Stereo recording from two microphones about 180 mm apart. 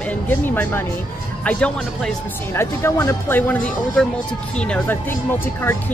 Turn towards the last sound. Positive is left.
turn(degrees=10)  # may be behind; listen again after turning